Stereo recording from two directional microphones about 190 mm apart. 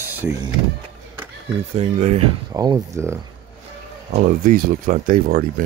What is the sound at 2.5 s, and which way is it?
Speech, 20° right (ahead or behind).